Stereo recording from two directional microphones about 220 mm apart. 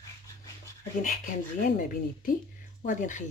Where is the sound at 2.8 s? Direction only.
35° left (ahead or behind).